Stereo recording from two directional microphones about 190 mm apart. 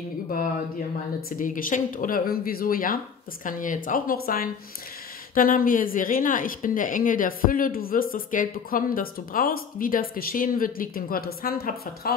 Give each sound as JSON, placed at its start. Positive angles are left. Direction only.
{"t": 1.4, "sound": "a woman's voice", "side_deg": 45}